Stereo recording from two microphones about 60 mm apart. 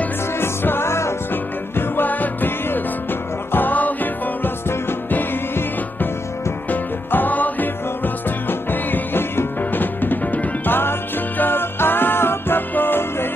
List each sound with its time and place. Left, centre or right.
0.4 s music: left
1.3 s music: left
6.7 s music: left